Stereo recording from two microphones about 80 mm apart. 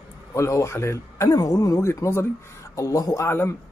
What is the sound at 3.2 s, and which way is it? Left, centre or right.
Speech, left.